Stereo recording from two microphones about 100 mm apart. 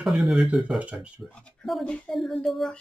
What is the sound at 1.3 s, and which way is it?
Speech, 10° left (ahead or behind).